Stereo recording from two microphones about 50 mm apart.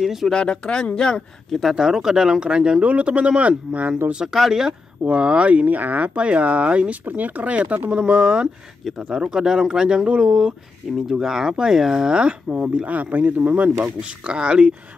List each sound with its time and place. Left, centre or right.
0.0 s speech: centre
0.3 s speech: centre
1.5 s speech: centre; by 4.0 s right
4.1 s speech: centre
5.0 s speech: right
8.0 s speech: right
13.8 s speech: centre